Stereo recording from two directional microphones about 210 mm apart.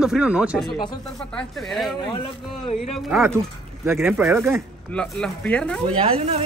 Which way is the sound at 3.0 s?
Centre (ahead or behind).